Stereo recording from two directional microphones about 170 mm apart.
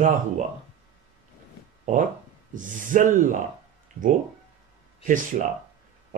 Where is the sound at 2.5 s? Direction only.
50° right (ahead or behind).